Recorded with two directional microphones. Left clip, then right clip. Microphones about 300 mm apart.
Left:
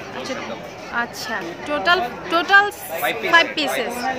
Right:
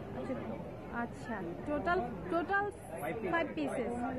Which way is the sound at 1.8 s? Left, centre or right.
Centre.